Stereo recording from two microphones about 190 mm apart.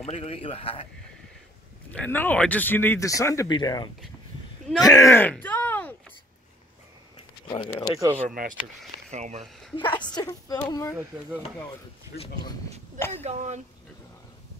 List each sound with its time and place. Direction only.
0.0 s a man's voice: 35° left (ahead or behind)
1.9 s speech: 10° left (ahead or behind)
7.4 s speech: 25° left (ahead or behind)
8.3 s speech: 45° right (ahead or behind)
9.1 s speech: 35° right (ahead or behind)
9.8 s speech: 25° left (ahead or behind)
11.0 s speech: 5° right (ahead or behind)
12.2 s speech: 25° left (ahead or behind)
12.6 s speech: 35° right (ahead or behind)